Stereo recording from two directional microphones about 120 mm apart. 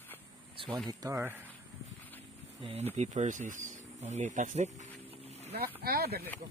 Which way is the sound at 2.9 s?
75° right (ahead or behind).